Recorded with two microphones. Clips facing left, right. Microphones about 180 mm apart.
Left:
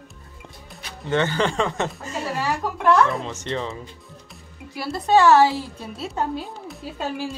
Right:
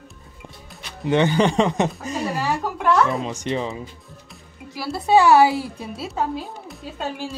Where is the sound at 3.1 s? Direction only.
15° right (ahead or behind).